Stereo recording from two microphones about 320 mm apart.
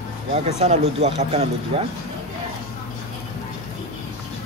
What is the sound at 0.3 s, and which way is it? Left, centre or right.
Speech, centre.